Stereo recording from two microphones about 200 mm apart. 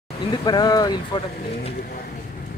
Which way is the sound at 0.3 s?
20° left (ahead or behind).